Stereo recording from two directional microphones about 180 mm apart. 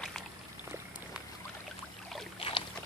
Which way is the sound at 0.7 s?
10° right (ahead or behind).